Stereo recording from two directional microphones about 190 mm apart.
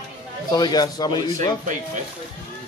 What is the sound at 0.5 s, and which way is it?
Speech, 20° left (ahead or behind).